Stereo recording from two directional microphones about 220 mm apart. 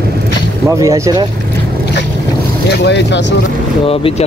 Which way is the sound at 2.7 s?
50° left (ahead or behind).